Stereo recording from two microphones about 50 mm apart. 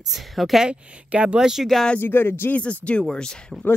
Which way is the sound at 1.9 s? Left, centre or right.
Left.